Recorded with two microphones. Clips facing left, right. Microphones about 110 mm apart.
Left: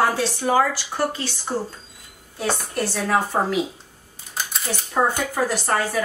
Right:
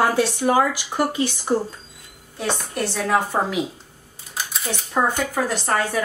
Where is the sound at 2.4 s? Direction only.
5° left (ahead or behind).